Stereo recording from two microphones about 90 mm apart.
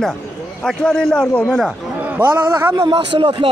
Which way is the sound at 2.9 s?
70° right (ahead or behind).